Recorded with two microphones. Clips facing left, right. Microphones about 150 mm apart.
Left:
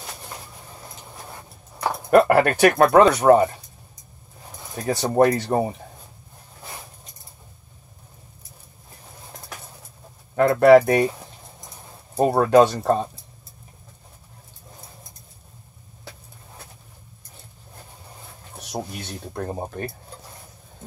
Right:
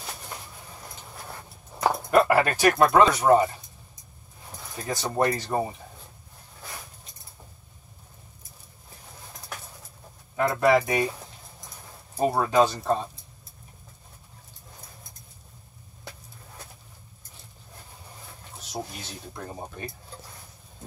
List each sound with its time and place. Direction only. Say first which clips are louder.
2.0 s speech: left 6 dB; 55° left (ahead or behind)
4.8 s speech: left 7 dB; 60° left (ahead or behind)
10.3 s speech: left 8 dB; 60° left (ahead or behind)
12.3 s speech: left 6 dB; 65° left (ahead or behind)
18.6 s speech: left 4 dB; 65° left (ahead or behind)